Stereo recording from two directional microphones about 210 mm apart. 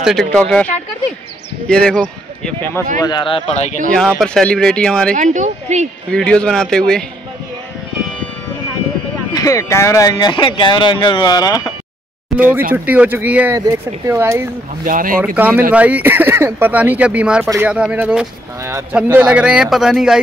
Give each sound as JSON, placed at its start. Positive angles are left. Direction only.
{"t": 0.0, "sound": "speech", "side_deg": 0}
{"t": 3.0, "sound": "speech", "side_deg": 20}
{"t": 4.2, "sound": "speech", "side_deg": 5}
{"t": 5.1, "sound": "a woman's voice", "side_deg": -35}
{"t": 6.1, "sound": "speech", "side_deg": 5}
{"t": 9.3, "sound": "speech", "side_deg": 15}
{"t": 12.4, "sound": "speech", "side_deg": -10}
{"t": 14.9, "sound": "a woman's voice", "side_deg": -40}
{"t": 15.3, "sound": "speech", "side_deg": -10}